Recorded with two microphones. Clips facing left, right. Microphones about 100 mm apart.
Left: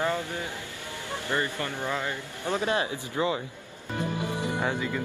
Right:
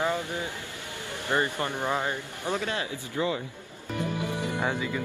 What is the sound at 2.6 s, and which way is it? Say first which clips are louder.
Speech: left 4 dB; 25° left (ahead or behind).